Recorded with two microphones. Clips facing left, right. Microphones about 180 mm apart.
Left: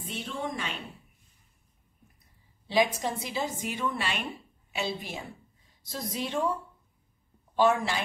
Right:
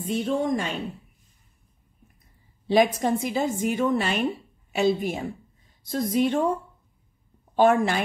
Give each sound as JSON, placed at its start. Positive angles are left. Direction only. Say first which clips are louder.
{"t": 0.0, "sound": "a woman's voice", "louder": "right 10 dB", "side_deg": -45}
{"t": 2.7, "sound": "a woman's voice", "louder": "right 6 dB", "side_deg": -50}
{"t": 7.5, "sound": "a woman's voice", "louder": "right 5 dB", "side_deg": -50}